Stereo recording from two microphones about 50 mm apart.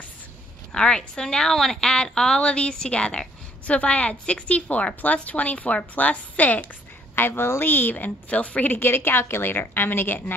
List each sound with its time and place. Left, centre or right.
0.7 s a woman's voice: centre
7.2 s a woman's voice: left
8.7 s a woman's voice: left